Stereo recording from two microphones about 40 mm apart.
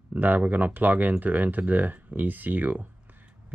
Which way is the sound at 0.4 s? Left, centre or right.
Right.